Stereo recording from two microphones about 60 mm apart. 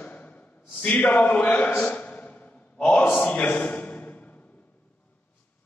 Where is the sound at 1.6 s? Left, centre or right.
Left.